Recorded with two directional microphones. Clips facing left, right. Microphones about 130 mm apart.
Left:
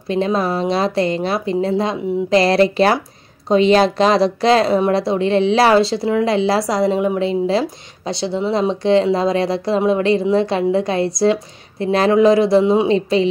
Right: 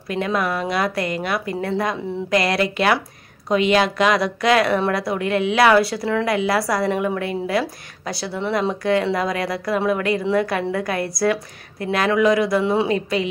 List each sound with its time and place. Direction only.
0.1 s a woman's voice: 25° left (ahead or behind)